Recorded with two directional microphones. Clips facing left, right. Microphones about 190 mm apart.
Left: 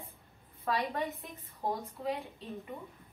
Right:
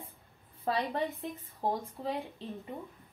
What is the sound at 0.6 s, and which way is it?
Speech, 30° right (ahead or behind).